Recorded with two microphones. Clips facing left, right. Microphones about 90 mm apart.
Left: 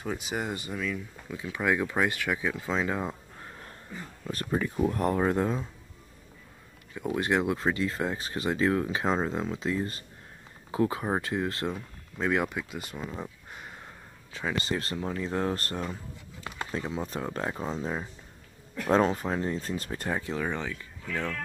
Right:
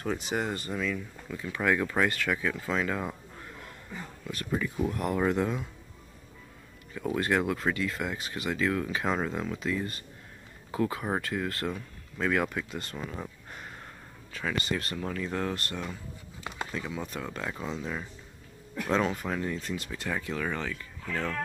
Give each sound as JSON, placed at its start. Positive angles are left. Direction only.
{"t": 0.0, "sound": "speech", "side_deg": 5}
{"t": 4.3, "sound": "speech", "side_deg": 35}
{"t": 6.9, "sound": "speech", "side_deg": 15}
{"t": 14.3, "sound": "speech", "side_deg": 25}